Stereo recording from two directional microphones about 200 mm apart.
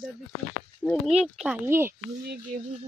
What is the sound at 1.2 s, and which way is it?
Speech, 5° right (ahead or behind).